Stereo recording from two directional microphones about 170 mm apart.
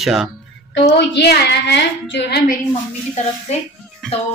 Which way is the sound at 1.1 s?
75° left (ahead or behind).